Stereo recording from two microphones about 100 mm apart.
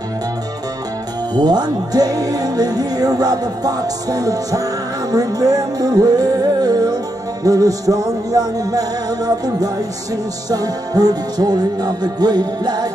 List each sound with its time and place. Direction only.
1.3 s speech: 45° right (ahead or behind)
5.1 s music: 40° right (ahead or behind)
7.4 s speech: 35° right (ahead or behind)